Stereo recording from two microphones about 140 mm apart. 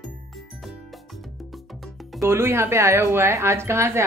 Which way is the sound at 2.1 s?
20° right (ahead or behind).